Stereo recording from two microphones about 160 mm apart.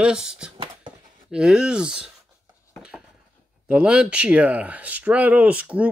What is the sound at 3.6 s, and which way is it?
Speech, 5° right (ahead or behind).